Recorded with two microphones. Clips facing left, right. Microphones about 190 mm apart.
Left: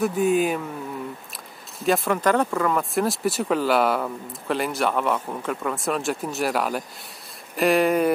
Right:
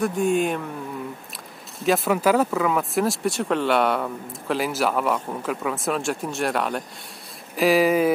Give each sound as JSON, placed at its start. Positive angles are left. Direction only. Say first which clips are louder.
{"t": 0.0, "sound": "speech", "louder": "left 1 dB", "side_deg": 5}
{"t": 1.8, "sound": "speech", "louder": "right 1 dB", "side_deg": 0}